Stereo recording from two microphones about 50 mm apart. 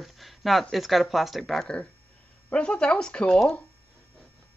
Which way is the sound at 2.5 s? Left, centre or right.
Centre.